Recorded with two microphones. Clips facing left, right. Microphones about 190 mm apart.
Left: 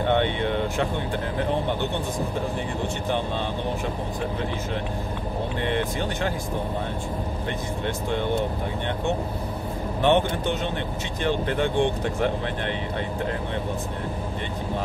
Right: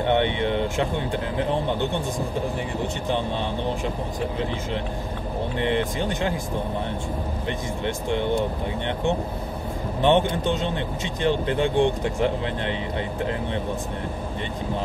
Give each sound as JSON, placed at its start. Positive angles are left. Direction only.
{"t": 0.0, "sound": "speech", "side_deg": -20}
{"t": 5.6, "sound": "speech", "side_deg": -15}
{"t": 7.8, "sound": "speech", "side_deg": -20}
{"t": 10.0, "sound": "speech", "side_deg": -15}